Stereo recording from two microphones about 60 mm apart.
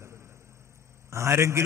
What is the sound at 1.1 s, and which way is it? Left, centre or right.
Speech, right.